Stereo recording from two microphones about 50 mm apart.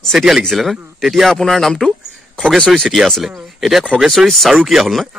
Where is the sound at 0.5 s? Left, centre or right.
Centre.